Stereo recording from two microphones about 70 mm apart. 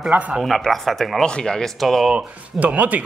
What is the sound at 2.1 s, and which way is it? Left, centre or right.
Speech, centre.